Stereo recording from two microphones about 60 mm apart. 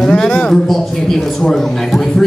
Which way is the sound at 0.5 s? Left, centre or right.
Centre.